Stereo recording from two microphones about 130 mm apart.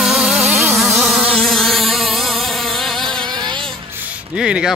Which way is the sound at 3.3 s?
35° right (ahead or behind).